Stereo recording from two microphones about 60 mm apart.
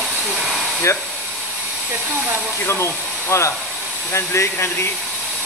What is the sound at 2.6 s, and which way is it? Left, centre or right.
Speech, left.